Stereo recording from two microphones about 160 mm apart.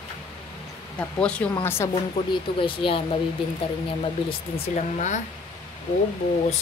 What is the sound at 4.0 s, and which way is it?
Speech, 40° left (ahead or behind).